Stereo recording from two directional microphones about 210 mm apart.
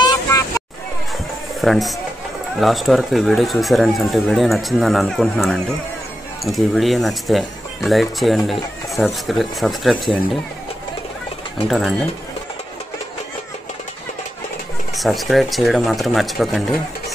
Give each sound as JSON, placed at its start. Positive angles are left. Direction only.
{"t": 0.0, "sound": "vehicle", "side_deg": 15}
{"t": 1.6, "sound": "speech", "side_deg": 0}
{"t": 11.6, "sound": "speech", "side_deg": 0}
{"t": 15.0, "sound": "speech", "side_deg": 0}